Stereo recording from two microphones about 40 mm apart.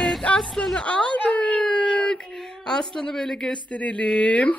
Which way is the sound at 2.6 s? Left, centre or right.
Centre.